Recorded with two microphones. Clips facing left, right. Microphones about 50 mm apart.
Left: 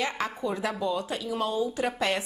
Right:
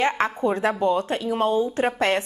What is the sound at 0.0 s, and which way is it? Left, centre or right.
A woman's voice, right.